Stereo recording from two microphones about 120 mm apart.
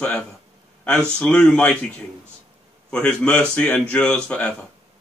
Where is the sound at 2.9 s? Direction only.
10° left (ahead or behind).